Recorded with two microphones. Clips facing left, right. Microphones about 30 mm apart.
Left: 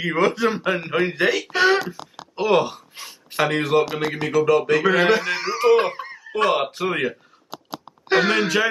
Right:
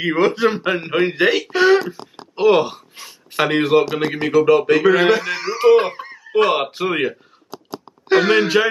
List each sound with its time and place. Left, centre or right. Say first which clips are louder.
0.0 s a man's voice: right 3 dB; centre
1.4 s a sound: right 4 dB; centre
1.9 s speech: right 3 dB; centre
2.9 s a sound: even; centre
3.3 s a man's voice: right 4 dB; centre
3.8 s a man's voice: right 4 dB; right
4.3 s a man's voice: right 4 dB; centre
4.8 s a sound: right 3 dB; centre
6.3 s a man's voice: right 4 dB; centre
8.1 s speech: right 4 dB; centre
8.4 s a man's voice: right 4 dB; centre